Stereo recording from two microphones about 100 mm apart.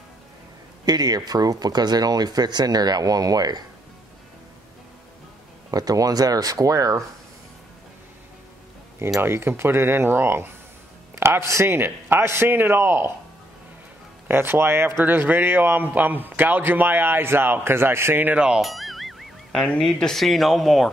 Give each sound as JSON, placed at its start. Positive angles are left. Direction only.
{"t": 0.8, "sound": "speech", "side_deg": -40}
{"t": 5.7, "sound": "speech", "side_deg": -40}
{"t": 9.2, "sound": "speech", "side_deg": -25}
{"t": 14.2, "sound": "speech", "side_deg": -20}